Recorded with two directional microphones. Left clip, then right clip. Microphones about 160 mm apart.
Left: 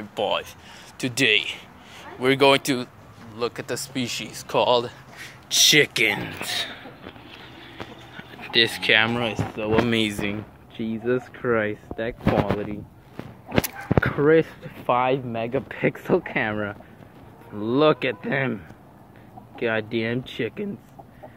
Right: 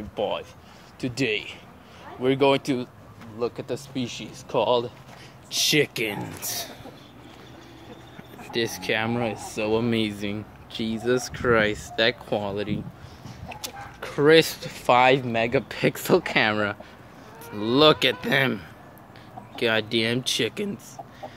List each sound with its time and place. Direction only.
0.1 s speech: centre (ahead or behind)
8.2 s speech: 5° right (ahead or behind)
14.1 s speech: centre (ahead or behind)
14.7 s speech: 30° right (ahead or behind)
15.7 s speech: 15° right (ahead or behind)